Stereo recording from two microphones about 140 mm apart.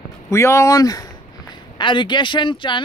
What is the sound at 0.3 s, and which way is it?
A woman's voice, 20° left (ahead or behind).